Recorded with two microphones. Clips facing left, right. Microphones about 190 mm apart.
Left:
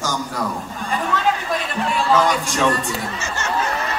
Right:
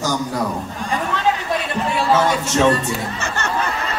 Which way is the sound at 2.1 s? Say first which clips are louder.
Right 1 dB; 25° right (ahead or behind).